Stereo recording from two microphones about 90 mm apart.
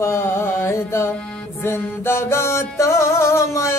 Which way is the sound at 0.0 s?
30° left (ahead or behind).